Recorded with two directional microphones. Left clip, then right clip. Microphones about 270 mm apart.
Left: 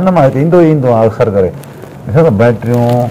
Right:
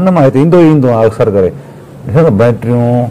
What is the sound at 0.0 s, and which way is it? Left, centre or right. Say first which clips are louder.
A man's voice: right 1 dB; right.